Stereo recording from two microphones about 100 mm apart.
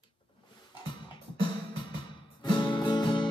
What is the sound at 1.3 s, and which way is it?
Music, 50° left (ahead or behind).